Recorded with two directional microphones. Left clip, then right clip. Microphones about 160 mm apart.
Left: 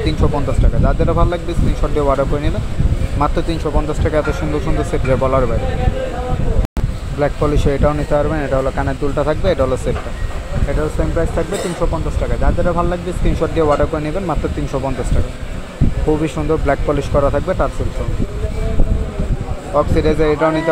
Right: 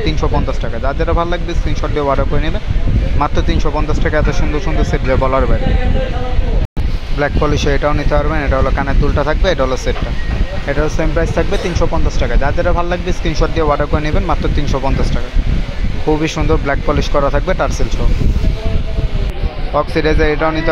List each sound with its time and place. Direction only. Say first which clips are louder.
0.0 s speech: right 1 dB; 5° left (ahead or behind)
5.1 s speech: right 1 dB; centre (ahead or behind)
7.2 s speech: right 1 dB; centre (ahead or behind)
10.7 s speech: right 3 dB; 25° right (ahead or behind)
13.4 s speech: left 1 dB; 5° left (ahead or behind)
16.1 s speech: right 2 dB; 5° right (ahead or behind)
19.7 s speech: right 1 dB; centre (ahead or behind)